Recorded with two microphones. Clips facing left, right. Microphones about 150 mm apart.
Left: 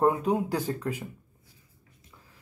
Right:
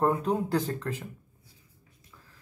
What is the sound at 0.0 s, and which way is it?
Speech, 10° left (ahead or behind).